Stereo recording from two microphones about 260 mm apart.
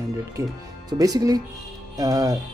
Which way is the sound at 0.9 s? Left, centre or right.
Centre.